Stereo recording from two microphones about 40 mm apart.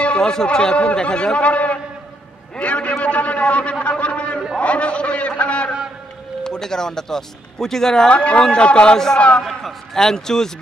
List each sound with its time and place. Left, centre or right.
0.0 s a sound: left
0.3 s a man's voice: left
3.8 s a sound: left
6.4 s speech: centre
8.1 s a man's voice: left
8.9 s speech: centre